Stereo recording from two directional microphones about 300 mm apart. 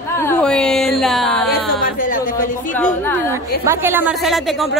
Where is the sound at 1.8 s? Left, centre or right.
Left.